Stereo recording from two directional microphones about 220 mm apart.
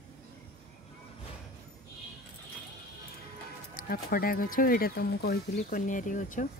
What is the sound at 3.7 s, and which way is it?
Speech, 40° left (ahead or behind).